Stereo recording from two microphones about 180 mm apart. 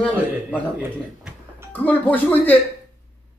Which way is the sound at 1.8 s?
10° left (ahead or behind).